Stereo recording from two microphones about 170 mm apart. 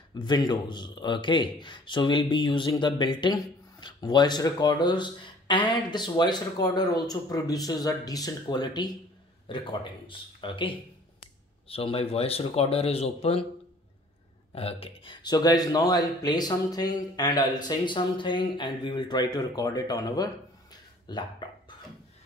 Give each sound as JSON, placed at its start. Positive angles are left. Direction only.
{"t": 0.2, "sound": "speech", "side_deg": 25}
{"t": 14.5, "sound": "speech", "side_deg": 35}
{"t": 21.1, "sound": "dog", "side_deg": 25}